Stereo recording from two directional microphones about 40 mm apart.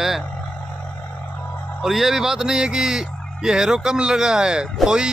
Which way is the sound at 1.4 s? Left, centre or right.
Left.